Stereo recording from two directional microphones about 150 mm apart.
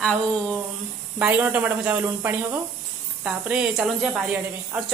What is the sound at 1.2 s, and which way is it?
Speech, 10° right (ahead or behind).